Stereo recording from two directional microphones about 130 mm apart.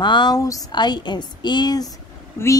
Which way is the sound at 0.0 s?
35° left (ahead or behind).